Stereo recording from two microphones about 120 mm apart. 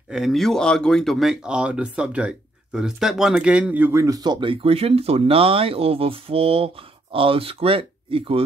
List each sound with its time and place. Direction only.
0.1 s speech: centre (ahead or behind); by 8.5 s 50° right (ahead or behind)